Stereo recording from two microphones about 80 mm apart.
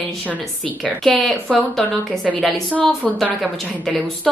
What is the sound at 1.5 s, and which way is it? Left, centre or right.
Speech, centre.